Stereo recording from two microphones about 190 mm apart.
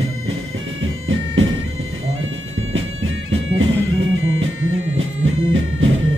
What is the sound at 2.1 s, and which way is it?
Music, 90° right.